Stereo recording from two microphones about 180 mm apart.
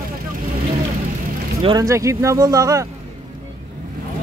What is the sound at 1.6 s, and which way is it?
Speech, 25° right (ahead or behind).